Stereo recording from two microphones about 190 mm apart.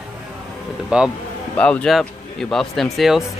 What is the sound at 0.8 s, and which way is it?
Speech, 5° right (ahead or behind).